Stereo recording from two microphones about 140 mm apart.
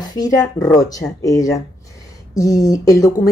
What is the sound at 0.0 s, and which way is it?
A woman's voice, 25° left (ahead or behind).